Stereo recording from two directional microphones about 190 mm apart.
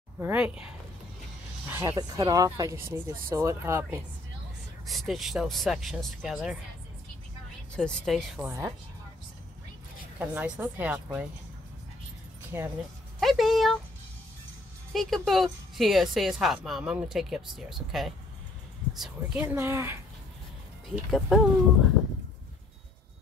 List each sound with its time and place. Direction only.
0.2 s a woman's voice: 5° right (ahead or behind)
4.8 s a woman's voice: centre (ahead or behind)
7.7 s a woman's voice: 5° left (ahead or behind)
8.5 s speech: 15° right (ahead or behind)
10.1 s speech: 5° right (ahead or behind)
12.5 s speech: 10° right (ahead or behind)
13.2 s a woman's voice: centre (ahead or behind)
14.9 s a woman's voice: centre (ahead or behind)
21.1 s a woman's voice: centre (ahead or behind)